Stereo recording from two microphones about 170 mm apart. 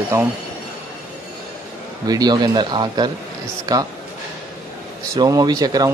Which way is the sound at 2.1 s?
25° right (ahead or behind).